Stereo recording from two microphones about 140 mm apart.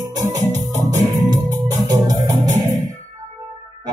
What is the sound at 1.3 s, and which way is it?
Music, 25° right (ahead or behind).